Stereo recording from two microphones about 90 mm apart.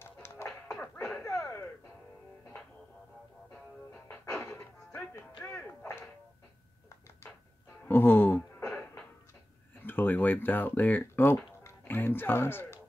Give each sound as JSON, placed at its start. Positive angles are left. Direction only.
{"t": 0.0, "sound": "music", "side_deg": 30}
{"t": 1.2, "sound": "a sound", "side_deg": 35}
{"t": 4.4, "sound": "music", "side_deg": 35}
{"t": 5.5, "sound": "whip", "side_deg": 25}
{"t": 7.8, "sound": "a sound", "side_deg": 25}
{"t": 8.6, "sound": "music", "side_deg": 15}
{"t": 9.8, "sound": "speech", "side_deg": 20}